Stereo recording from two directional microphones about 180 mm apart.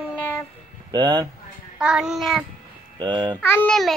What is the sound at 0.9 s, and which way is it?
Speech, 25° right (ahead or behind).